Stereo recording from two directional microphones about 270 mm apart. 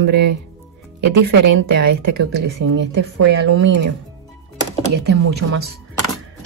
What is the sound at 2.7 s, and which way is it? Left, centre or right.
Speech, right.